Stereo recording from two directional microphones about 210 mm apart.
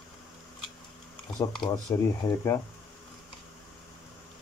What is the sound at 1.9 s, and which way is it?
Speech, 15° left (ahead or behind).